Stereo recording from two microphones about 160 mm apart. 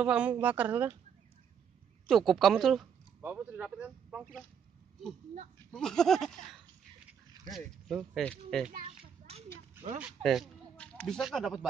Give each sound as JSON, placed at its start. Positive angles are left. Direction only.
{"t": 0.0, "sound": "speech", "side_deg": -5}
{"t": 2.0, "sound": "a child's voice", "side_deg": 0}
{"t": 3.2, "sound": "speech", "side_deg": -15}
{"t": 5.7, "sound": "a child's voice", "side_deg": 5}
{"t": 9.3, "sound": "a sound", "side_deg": -40}
{"t": 9.9, "sound": "speech", "side_deg": -5}